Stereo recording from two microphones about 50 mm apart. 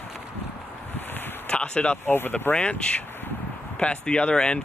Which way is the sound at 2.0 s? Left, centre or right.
Left.